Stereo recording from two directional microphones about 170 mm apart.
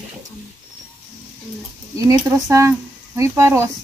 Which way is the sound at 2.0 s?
20° right (ahead or behind).